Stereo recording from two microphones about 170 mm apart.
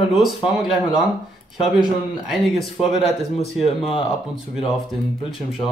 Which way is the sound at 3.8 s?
35° left (ahead or behind).